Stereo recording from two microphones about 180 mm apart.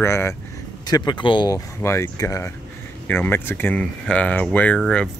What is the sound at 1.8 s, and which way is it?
Speech, 15° left (ahead or behind).